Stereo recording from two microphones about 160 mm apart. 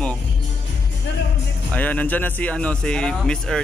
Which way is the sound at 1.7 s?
10° left (ahead or behind).